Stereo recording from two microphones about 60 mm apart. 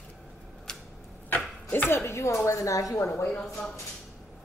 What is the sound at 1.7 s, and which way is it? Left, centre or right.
Speech, left.